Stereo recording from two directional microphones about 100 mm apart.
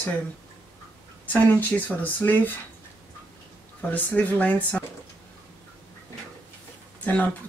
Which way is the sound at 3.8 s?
15° left (ahead or behind).